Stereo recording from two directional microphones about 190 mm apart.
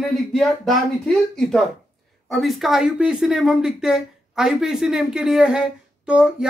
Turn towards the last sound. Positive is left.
turn(degrees=-5)  # may be behind; listen again after turning